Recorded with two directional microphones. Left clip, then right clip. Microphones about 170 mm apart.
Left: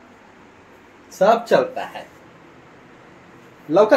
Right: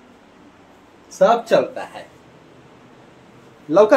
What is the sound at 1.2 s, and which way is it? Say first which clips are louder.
Speech: right 1 dB; 10° left (ahead or behind).